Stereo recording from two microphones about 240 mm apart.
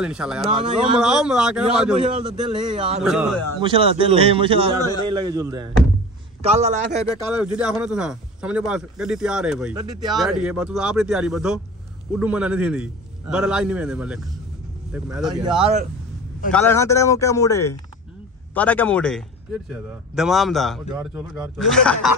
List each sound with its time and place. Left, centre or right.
0.0 s speech: centre
2.2 s a man's voice: centre
3.0 s speech: centre
3.6 s a man's voice: right
6.4 s a man's voice: right
7.1 s speech: centre
16.5 s speech: centre